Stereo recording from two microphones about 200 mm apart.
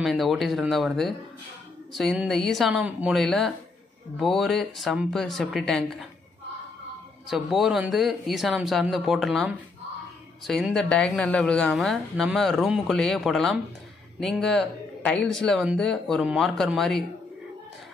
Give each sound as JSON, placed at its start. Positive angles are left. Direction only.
{"t": 0.0, "sound": "a woman's voice", "side_deg": 0}
{"t": 7.2, "sound": "a woman's voice", "side_deg": 0}